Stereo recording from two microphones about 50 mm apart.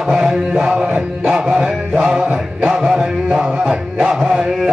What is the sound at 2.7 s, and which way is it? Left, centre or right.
Music, centre.